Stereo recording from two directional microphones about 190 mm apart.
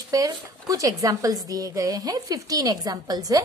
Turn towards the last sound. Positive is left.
turn(degrees=-20)  # may be behind; listen again after turning